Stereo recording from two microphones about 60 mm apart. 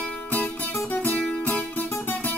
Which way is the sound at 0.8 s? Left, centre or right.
Left.